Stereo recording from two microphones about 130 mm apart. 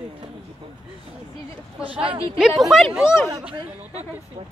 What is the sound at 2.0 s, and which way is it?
Speech, 45° right (ahead or behind).